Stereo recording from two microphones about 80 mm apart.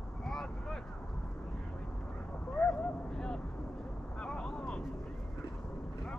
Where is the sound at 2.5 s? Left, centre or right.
Centre.